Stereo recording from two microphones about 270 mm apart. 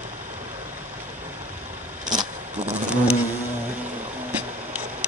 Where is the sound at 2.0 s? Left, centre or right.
Centre.